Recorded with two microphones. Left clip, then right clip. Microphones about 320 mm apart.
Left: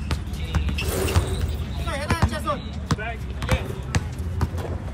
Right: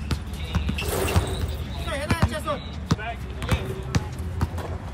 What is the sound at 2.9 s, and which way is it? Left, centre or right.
Basketball bounce, left.